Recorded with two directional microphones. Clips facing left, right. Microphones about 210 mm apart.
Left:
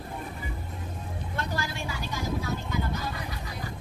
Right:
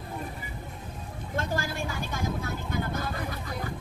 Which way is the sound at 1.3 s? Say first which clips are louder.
Right 3 dB; 45° right (ahead or behind).